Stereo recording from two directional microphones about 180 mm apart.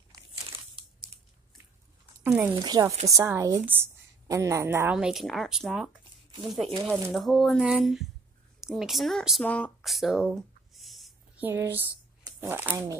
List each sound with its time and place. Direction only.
2.2 s speech: 10° right (ahead or behind)
2.6 s a woman's voice: 20° right (ahead or behind)
4.9 s speech: centre (ahead or behind)
8.5 s a sound: 5° right (ahead or behind)
11.4 s a woman's voice: 10° right (ahead or behind)
12.2 s shuffling cards: 20° right (ahead or behind)
12.4 s a woman's voice: 10° right (ahead or behind)